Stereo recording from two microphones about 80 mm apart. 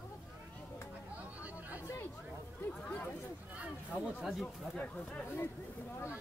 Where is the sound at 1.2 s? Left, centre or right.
Centre.